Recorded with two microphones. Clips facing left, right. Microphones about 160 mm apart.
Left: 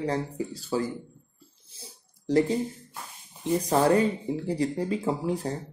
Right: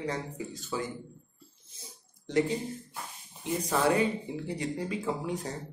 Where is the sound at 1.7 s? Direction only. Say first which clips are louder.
Left 4 dB; 30° left (ahead or behind).